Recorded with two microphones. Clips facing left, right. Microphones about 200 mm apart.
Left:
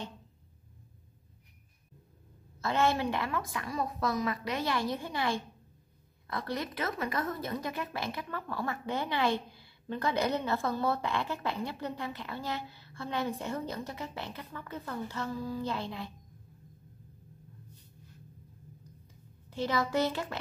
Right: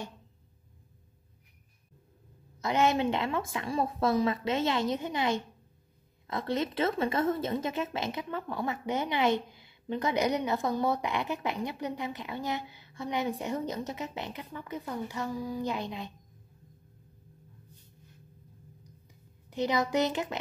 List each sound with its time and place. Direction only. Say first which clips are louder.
2.6 s a woman's voice: right 2 dB; 20° right (ahead or behind)
19.5 s speech: right 2 dB; 15° right (ahead or behind)